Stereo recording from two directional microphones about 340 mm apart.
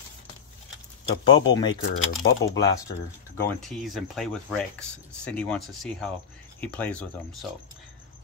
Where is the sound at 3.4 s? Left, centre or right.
Centre.